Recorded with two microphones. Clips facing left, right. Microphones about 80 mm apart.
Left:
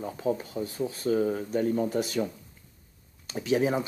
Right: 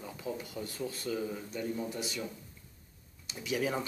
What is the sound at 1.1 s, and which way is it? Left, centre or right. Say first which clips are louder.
Speech: left 10 dB; left.